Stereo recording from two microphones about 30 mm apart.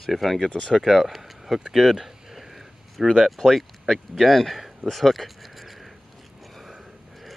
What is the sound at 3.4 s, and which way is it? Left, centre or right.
Speech, centre.